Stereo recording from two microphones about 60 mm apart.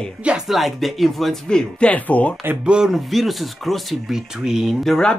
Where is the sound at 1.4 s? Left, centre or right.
Centre.